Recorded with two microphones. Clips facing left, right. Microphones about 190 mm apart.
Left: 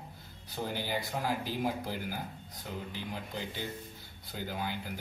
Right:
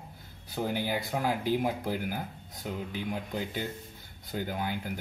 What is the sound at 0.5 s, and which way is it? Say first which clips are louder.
Speech: right 4 dB; 55° right (ahead or behind).